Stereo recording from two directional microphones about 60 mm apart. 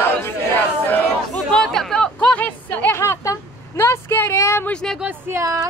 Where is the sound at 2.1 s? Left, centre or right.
Left.